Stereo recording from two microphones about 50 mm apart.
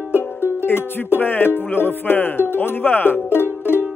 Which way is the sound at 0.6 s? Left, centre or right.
Left.